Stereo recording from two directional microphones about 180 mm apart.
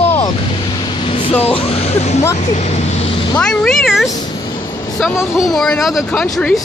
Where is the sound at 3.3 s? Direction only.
5° left (ahead or behind).